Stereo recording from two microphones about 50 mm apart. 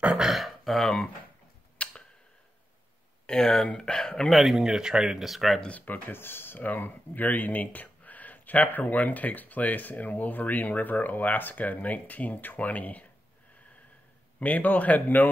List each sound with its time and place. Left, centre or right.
0.2 s a sound: centre
1.8 s a sound: left
3.3 s speech: centre
4.3 s speech: centre
5.7 s speech: left
14.4 s speech: left